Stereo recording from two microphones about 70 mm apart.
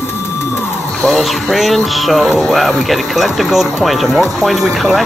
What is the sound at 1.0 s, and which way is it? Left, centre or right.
Music, centre.